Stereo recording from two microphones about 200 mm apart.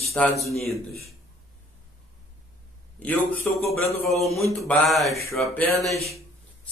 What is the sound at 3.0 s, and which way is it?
A man's voice, 10° left (ahead or behind).